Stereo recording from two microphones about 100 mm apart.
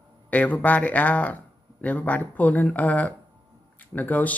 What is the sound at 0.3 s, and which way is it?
Speech, 15° left (ahead or behind).